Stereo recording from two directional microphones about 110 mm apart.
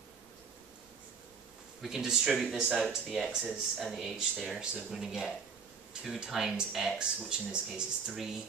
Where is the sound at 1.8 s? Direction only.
5° right (ahead or behind).